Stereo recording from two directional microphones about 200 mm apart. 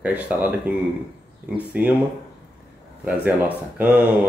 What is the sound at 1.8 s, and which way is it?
Speech, 5° right (ahead or behind).